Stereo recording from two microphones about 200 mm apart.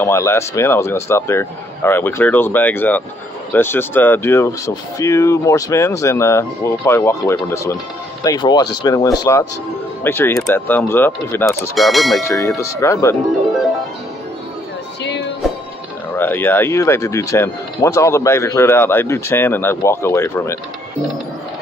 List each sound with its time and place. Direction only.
0.0 s speech: 15° left (ahead or behind)
11.7 s speech: centre (ahead or behind)
12.3 s speech: 15° left (ahead or behind)
16.1 s speech: 10° left (ahead or behind)